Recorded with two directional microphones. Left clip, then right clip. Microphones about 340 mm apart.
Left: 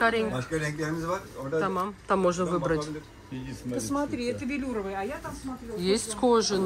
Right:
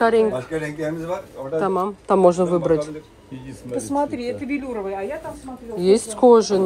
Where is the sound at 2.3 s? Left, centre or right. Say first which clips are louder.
Right 10 dB; centre.